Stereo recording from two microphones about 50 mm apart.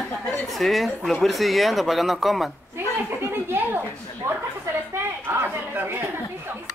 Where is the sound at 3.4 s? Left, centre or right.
Right.